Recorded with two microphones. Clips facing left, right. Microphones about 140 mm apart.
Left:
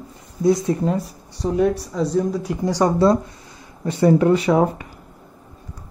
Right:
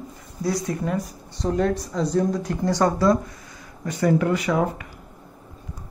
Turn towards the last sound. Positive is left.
turn(degrees=30)  # may be behind; listen again after turning